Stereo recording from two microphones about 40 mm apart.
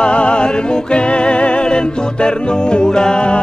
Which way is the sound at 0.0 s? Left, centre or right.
Left.